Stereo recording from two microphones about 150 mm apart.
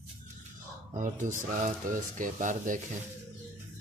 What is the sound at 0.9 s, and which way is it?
Speech, 60° right (ahead or behind).